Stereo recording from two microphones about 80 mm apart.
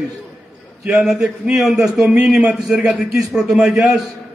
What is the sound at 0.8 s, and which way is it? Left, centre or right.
A man's voice, centre.